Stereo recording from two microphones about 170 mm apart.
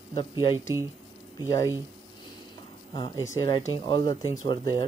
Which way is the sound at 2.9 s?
30° left (ahead or behind).